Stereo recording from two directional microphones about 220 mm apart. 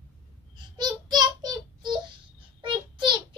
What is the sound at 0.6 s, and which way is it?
Child singing, 20° right (ahead or behind).